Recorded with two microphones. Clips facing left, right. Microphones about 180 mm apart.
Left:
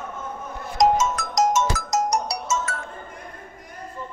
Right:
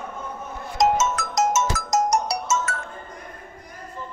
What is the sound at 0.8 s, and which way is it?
Music, 25° right (ahead or behind).